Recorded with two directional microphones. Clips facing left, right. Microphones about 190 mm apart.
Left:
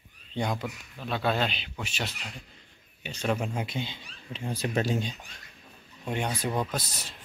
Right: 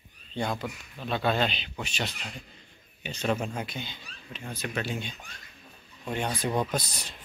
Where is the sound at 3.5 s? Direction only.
20° left (ahead or behind); by 5.2 s 35° left (ahead or behind).